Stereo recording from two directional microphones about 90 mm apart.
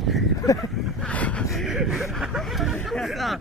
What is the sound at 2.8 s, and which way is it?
Speech, centre (ahead or behind).